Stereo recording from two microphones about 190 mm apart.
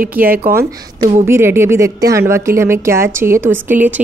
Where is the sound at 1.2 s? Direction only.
15° right (ahead or behind).